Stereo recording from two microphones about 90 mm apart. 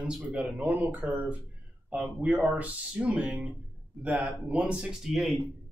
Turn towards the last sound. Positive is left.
turn(degrees=-5)  # may be behind; listen again after turning